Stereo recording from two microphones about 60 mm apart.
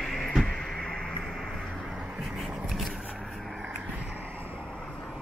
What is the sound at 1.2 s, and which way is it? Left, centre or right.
Music, centre.